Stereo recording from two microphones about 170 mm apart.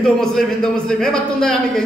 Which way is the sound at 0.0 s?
5° left (ahead or behind).